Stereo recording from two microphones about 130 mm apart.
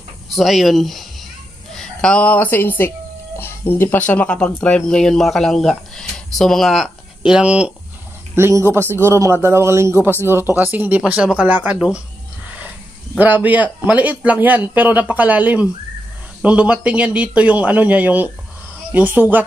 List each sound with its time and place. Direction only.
0.3 s a woman's voice: centre (ahead or behind)
8.4 s a man's voice: 20° right (ahead or behind)
13.2 s a man's voice: 10° right (ahead or behind)